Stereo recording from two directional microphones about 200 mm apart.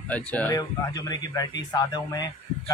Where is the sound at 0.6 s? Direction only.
15° left (ahead or behind).